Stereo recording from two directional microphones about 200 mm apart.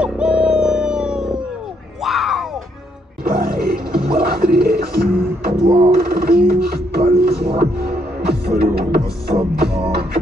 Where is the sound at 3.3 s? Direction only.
50° right (ahead or behind).